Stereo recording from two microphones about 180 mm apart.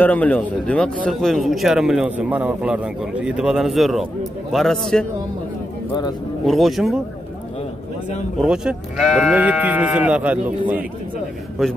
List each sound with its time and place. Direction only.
0.0 s a man's voice: 10° left (ahead or behind)
6.4 s a man's voice: centre (ahead or behind)
8.4 s a man's voice: 5° right (ahead or behind)
11.6 s a man's voice: 5° left (ahead or behind)